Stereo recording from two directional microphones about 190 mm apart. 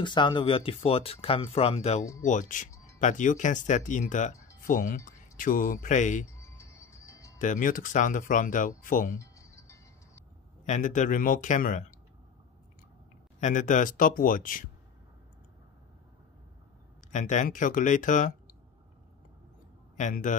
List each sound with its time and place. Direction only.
0.0 s speech: 25° left (ahead or behind); by 6.2 s 40° left (ahead or behind)
6.2 s music: 15° left (ahead or behind)
7.3 s speech: 40° left (ahead or behind)
9.2 s music: 15° left (ahead or behind)
10.6 s speech: 40° left (ahead or behind)
13.4 s speech: 40° left (ahead or behind)
17.1 s speech: 40° left (ahead or behind)
20.0 s speech: 40° left (ahead or behind)